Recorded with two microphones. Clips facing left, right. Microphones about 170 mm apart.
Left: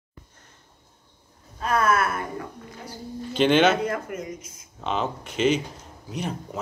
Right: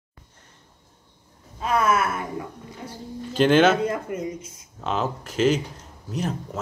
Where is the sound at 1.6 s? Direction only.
20° right (ahead or behind).